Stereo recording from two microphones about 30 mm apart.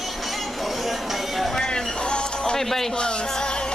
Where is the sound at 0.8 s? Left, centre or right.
Centre.